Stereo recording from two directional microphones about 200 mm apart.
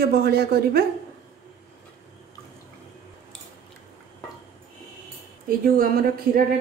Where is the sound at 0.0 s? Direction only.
50° right (ahead or behind).